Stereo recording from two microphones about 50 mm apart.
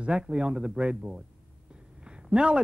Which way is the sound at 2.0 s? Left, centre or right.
Centre.